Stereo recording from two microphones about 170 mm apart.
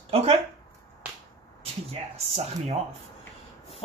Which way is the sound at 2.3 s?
40° right (ahead or behind).